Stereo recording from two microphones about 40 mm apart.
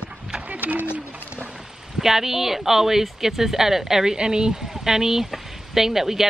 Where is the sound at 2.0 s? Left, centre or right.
Centre.